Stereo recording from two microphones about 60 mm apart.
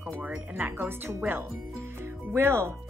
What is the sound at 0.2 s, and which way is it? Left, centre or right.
Speech, right.